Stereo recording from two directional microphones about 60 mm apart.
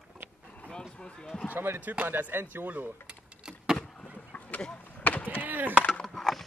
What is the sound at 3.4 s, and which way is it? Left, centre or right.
Vehicle, centre.